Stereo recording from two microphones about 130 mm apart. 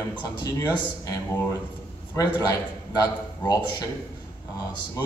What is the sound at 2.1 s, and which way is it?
Speech, 30° left (ahead or behind).